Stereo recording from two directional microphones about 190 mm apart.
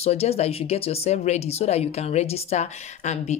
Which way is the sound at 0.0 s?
30° left (ahead or behind).